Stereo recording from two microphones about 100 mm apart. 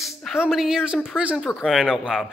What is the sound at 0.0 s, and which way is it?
A man's voice, centre (ahead or behind).